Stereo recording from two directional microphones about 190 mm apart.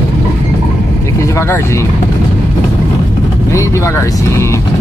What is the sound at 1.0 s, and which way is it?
Speech, 15° left (ahead or behind).